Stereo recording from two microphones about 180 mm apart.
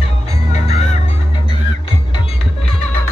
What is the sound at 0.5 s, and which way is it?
Music, 35° left (ahead or behind).